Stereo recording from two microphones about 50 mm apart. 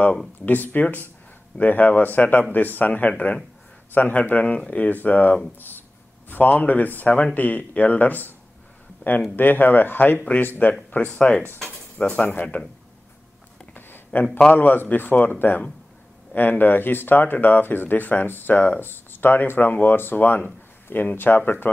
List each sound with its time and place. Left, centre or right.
0.5 s speech: left
9.3 s speech: left
13.7 s a sound: left
14.5 s speech: left